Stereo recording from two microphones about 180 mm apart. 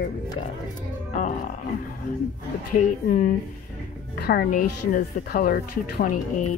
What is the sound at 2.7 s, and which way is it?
Speech, 40° left (ahead or behind).